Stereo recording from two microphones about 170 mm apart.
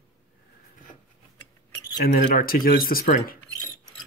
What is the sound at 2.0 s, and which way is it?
Speech, 55° left (ahead or behind).